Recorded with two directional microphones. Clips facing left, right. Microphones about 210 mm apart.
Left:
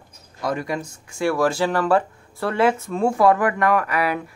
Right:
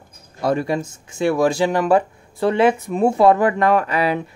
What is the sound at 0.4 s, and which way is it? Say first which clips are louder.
Speech: right 5 dB; 30° right (ahead or behind).